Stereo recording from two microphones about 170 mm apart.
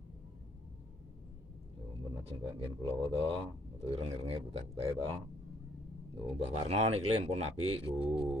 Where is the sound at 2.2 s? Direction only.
35° right (ahead or behind).